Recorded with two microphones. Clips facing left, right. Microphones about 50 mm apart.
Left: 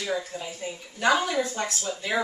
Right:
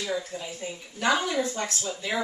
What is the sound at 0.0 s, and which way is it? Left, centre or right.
A woman's voice, centre.